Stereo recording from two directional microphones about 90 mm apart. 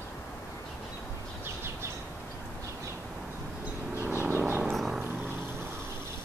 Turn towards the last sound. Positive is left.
turn(degrees=-25)  # may be behind; listen again after turning